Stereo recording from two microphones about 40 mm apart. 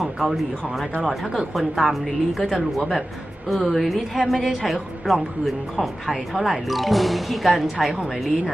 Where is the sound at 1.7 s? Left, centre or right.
Centre.